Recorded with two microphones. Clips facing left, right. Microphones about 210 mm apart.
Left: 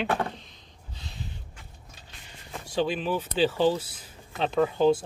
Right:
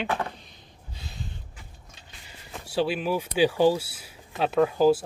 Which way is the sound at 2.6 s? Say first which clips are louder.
Right 1 dB; 5° right (ahead or behind).